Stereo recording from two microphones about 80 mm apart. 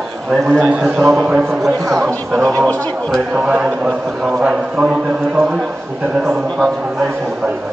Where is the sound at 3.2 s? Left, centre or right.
Centre.